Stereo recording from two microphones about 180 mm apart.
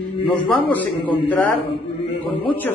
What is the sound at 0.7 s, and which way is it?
Speech, 10° left (ahead or behind).